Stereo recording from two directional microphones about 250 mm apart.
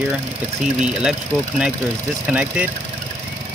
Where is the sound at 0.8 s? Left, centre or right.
Centre.